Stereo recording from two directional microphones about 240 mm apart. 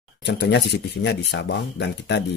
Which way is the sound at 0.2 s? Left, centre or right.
Left.